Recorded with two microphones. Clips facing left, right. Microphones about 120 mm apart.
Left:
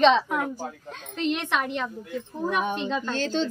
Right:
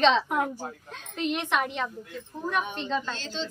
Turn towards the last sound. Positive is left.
turn(degrees=55)  # may be behind; listen again after turning